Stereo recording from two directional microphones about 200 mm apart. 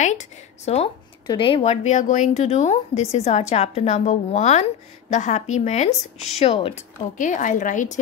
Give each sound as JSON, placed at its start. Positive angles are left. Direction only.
{"t": 0.0, "sound": "a woman's voice", "side_deg": 35}
{"t": 7.2, "sound": "a woman's voice", "side_deg": 40}